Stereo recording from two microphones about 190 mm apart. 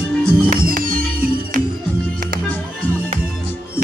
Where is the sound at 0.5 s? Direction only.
50° right (ahead or behind).